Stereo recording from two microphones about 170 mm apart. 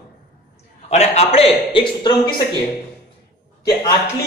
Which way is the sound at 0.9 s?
40° left (ahead or behind).